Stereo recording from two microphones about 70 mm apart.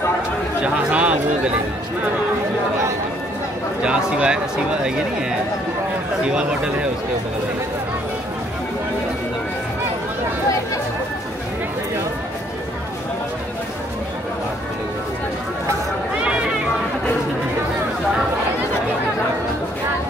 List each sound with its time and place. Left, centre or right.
0.6 s speech: centre
3.8 s speech: centre
6.2 s speech: centre